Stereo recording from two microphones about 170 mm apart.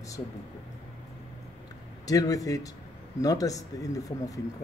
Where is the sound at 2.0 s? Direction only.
20° left (ahead or behind).